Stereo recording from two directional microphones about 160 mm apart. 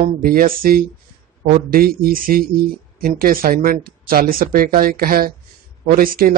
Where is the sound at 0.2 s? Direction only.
65° right (ahead or behind).